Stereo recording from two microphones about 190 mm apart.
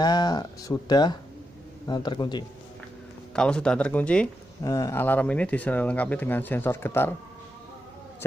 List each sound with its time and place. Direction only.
0.0 s speech: 20° left (ahead or behind)
3.3 s speech: 5° left (ahead or behind)
4.6 s speech: 15° left (ahead or behind)